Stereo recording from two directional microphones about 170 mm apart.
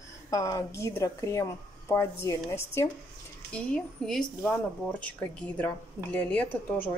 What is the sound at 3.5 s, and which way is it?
A woman's voice, 5° left (ahead or behind).